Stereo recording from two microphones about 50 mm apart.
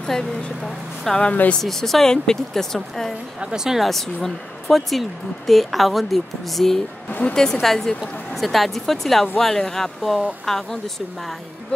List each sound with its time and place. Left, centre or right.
0.7 s speech: centre
1.2 s speech: left
1.6 s speech: centre
3.3 s speech: centre
3.9 s speech: centre
7.1 s speech: left
7.6 s speech: centre